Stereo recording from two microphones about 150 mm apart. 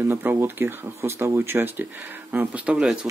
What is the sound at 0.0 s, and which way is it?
Speech, 15° right (ahead or behind).